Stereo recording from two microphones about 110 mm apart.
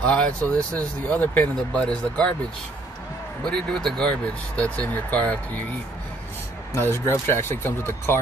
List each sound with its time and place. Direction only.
0.0 s speech: 10° left (ahead or behind)
3.4 s speech: 10° left (ahead or behind)
6.7 s speech: 25° left (ahead or behind)